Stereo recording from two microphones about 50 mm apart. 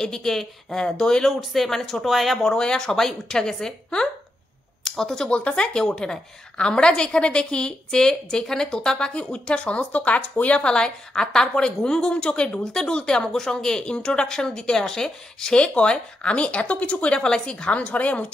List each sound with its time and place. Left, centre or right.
0.0 s a woman's voice: centre
1.3 s speech: centre
2.0 s speech: centre
2.4 s a woman's voice: centre
5.3 s a woman's voice: left